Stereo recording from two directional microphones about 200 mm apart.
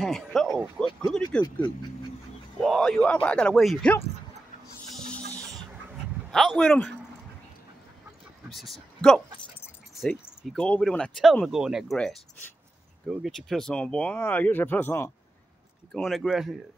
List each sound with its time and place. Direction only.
0.0 s speech: centre (ahead or behind)
1.4 s speech: 20° left (ahead or behind)
2.6 s speech: centre (ahead or behind)
4.9 s music: 5° left (ahead or behind)
6.3 s speech: centre (ahead or behind)
8.5 s speech: centre (ahead or behind)